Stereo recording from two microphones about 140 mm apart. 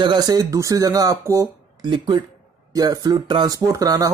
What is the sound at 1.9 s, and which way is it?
Speech, 35° right (ahead or behind).